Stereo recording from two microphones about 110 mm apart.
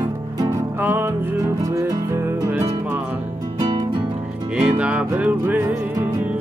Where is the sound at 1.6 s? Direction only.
30° right (ahead or behind).